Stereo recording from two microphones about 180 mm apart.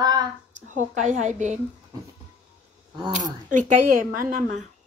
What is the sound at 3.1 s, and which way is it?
A woman's voice, 45° right (ahead or behind).